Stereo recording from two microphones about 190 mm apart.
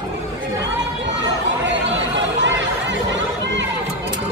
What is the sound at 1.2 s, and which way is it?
Chatter, 70° right (ahead or behind).